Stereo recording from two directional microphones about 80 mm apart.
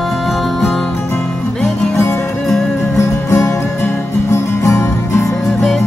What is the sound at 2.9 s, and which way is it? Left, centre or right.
Music, left.